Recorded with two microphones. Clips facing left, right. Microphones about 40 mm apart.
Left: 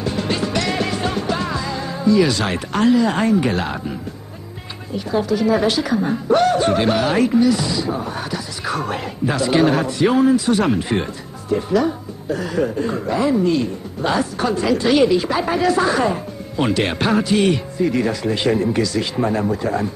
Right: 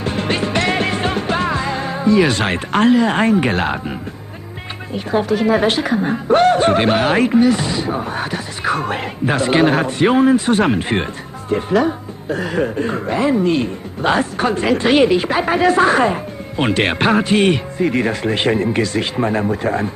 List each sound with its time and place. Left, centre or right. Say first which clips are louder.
0.0 s music: right 2 dB; right
4.9 s speech: right 2 dB; right
19.1 s speech: right 1 dB; right